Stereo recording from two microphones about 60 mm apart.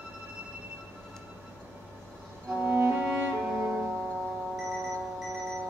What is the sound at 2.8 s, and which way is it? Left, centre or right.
Music, right.